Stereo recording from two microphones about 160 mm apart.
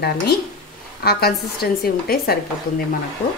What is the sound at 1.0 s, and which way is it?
A woman's voice, 80° left.